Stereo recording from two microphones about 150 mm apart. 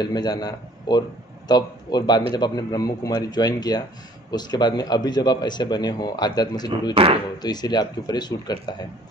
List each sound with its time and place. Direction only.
0.0 s speech: 25° left (ahead or behind)